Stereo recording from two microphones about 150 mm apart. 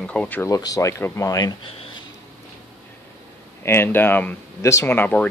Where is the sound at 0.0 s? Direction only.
5° left (ahead or behind).